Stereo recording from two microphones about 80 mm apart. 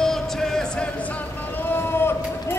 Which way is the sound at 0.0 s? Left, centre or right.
Centre.